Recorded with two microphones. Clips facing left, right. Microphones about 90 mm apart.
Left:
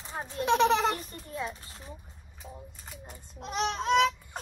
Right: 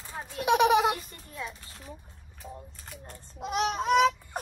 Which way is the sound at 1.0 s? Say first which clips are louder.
Left 3 dB; 40° left (ahead or behind).